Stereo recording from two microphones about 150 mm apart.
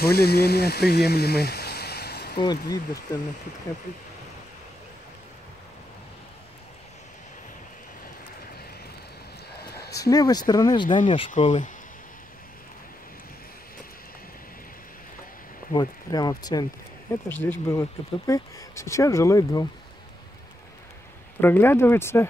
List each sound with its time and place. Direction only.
0.0 s speech: 90° left
2.3 s speech: 25° left (ahead or behind)
9.6 s a sound: 90° left
9.9 s speech: 25° left (ahead or behind)
11.2 s speech: 55° left (ahead or behind)
15.7 s speech: 25° left (ahead or behind)
17.1 s speech: 15° left (ahead or behind)
21.4 s speech: 15° left (ahead or behind)